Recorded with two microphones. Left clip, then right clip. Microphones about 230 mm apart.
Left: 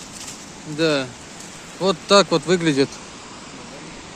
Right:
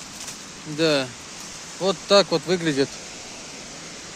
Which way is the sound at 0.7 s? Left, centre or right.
Centre.